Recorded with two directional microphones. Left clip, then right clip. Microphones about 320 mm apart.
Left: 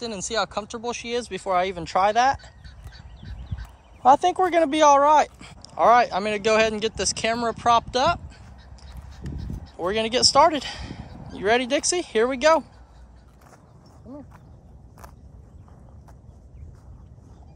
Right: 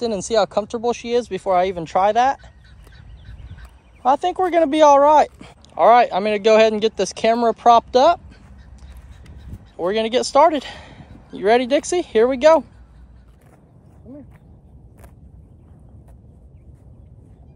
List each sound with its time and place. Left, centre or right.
0.0 s speech: centre
4.0 s speech: centre
9.8 s speech: centre